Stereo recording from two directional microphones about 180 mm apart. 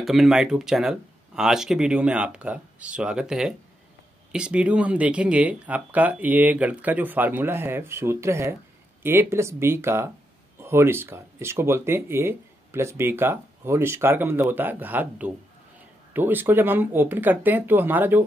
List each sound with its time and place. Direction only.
0.0 s speech: centre (ahead or behind)